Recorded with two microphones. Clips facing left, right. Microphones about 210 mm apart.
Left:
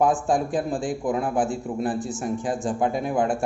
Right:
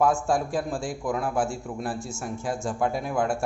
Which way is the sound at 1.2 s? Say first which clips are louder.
Left 3 dB; 20° left (ahead or behind).